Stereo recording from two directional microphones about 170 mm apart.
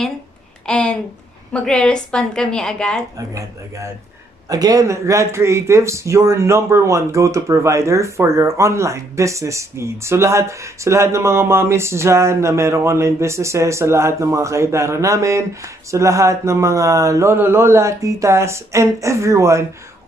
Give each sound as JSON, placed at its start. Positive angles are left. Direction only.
{"t": 0.7, "sound": "a woman's voice", "side_deg": 5}
{"t": 3.2, "sound": "speech", "side_deg": -20}